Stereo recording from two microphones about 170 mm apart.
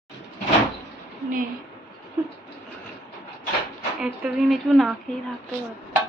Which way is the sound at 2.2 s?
15° right (ahead or behind).